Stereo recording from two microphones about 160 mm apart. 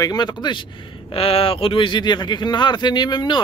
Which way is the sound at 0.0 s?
25° left (ahead or behind).